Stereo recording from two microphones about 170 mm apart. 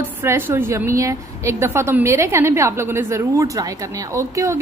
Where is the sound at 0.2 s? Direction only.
15° right (ahead or behind).